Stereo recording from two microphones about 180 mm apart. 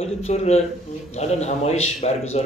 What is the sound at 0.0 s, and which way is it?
Speech, 35° left (ahead or behind).